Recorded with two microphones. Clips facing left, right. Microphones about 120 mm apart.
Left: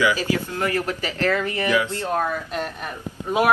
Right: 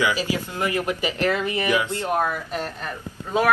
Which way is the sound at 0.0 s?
15° right (ahead or behind).